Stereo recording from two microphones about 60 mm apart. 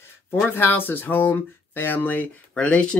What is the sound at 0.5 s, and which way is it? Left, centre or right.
Speech, left.